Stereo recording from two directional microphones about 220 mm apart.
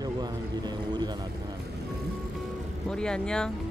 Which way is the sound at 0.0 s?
20° right (ahead or behind).